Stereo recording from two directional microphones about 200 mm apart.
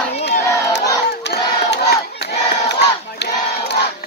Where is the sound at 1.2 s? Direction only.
60° left (ahead or behind).